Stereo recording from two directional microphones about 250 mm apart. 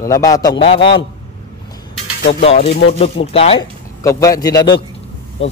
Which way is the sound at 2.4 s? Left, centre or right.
Left.